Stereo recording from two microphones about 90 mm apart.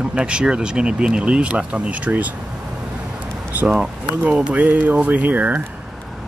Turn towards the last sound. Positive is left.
turn(degrees=-20)  # may be behind; listen again after turning